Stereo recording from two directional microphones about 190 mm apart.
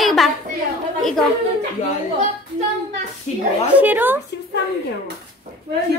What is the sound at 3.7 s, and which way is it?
Speech, 10° right (ahead or behind).